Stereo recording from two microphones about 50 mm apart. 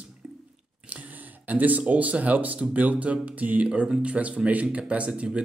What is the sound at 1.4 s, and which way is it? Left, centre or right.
Speech, right.